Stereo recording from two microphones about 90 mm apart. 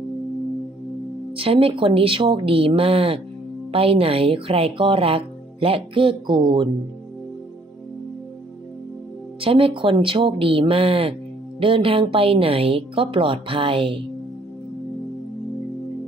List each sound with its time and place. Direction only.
1.3 s speech: 90° right; by 6.7 s 65° right (ahead or behind)
9.4 s speech: 90° right